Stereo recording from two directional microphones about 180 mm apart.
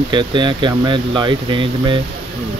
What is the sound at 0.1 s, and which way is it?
Speech, 25° right (ahead or behind).